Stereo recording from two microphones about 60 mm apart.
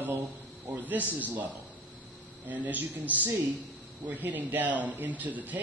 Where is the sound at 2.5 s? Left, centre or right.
Right.